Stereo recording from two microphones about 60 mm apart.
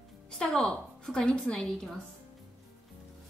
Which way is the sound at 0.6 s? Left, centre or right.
Centre.